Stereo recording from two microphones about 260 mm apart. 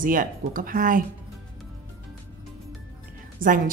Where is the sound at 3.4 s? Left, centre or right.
Right.